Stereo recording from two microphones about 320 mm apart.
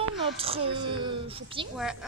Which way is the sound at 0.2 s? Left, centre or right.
Centre.